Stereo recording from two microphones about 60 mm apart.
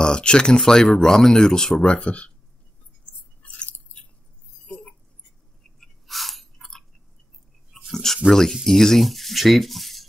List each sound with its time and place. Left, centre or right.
0.0 s speech: centre
3.4 s chewing: left
4.6 s a sound: centre
5.8 s chewing: centre
7.9 s a sound: centre
8.3 s speech: centre